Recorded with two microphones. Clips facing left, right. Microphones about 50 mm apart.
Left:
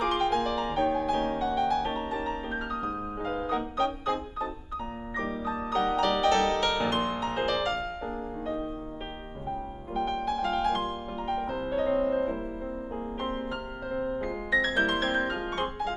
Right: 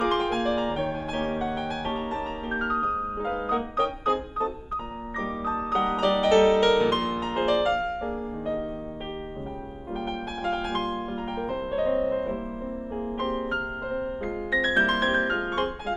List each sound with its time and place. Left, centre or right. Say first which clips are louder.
0.0 s music: right 2 dB; centre
2.9 s music: right 4 dB; centre
5.2 s music: right 4 dB; right
9.9 s music: left 4 dB; centre
12.0 s music: right 1 dB; centre